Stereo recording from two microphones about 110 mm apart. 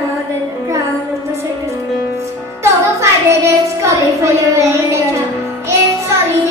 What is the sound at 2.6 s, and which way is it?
Child singing, 25° right (ahead or behind).